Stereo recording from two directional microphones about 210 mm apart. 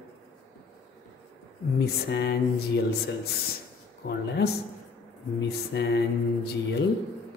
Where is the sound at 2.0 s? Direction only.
55° left (ahead or behind).